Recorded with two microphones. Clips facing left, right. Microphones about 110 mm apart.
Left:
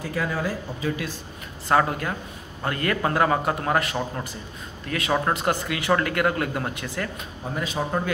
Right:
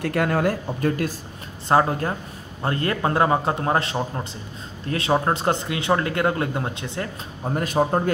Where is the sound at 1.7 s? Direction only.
30° right (ahead or behind).